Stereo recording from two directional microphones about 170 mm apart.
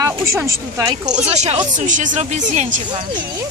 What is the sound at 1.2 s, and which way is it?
Speech, 40° right (ahead or behind).